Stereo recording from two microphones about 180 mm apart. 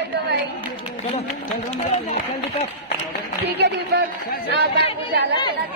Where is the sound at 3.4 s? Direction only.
65° right (ahead or behind).